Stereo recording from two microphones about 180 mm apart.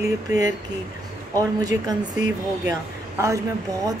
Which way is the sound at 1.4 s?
20° right (ahead or behind).